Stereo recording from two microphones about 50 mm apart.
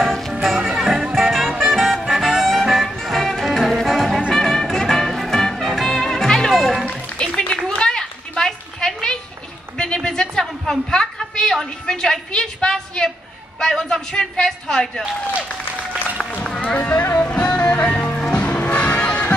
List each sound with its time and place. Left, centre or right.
0.0 s music: centre
0.3 s music: centre
6.5 s music: centre
6.9 s music: left
7.3 s a sound: centre
16.4 s run: centre
16.7 s speech: left
17.2 s music: left